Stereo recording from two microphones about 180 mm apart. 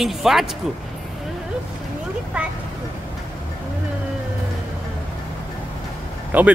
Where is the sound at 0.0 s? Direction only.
Centre (ahead or behind).